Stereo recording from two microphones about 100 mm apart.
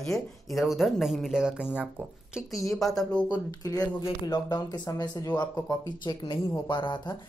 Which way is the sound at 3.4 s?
35° left (ahead or behind).